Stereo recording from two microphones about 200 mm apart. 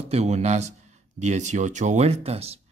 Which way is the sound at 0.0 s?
30° right (ahead or behind).